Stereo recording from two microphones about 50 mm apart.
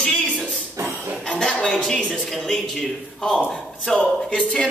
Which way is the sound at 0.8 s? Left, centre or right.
Right.